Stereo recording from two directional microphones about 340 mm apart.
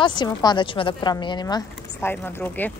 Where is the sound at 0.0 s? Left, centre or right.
Centre.